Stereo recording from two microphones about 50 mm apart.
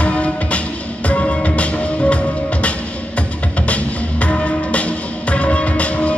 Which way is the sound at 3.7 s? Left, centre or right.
Left.